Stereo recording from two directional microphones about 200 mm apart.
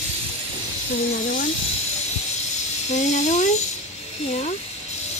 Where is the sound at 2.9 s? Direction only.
35° left (ahead or behind).